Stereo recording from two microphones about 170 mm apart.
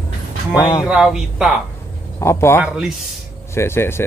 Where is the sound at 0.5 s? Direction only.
20° left (ahead or behind).